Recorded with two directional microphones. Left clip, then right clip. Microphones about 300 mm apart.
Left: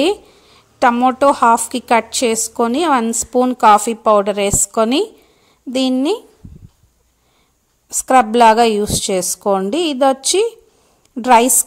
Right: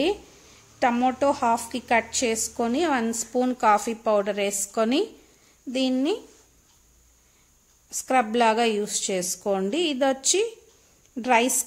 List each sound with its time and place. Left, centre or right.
0.7 s a woman's voice: centre
7.9 s a woman's voice: left